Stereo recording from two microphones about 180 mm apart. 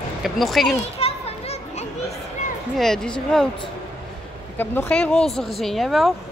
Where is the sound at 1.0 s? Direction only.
35° left (ahead or behind).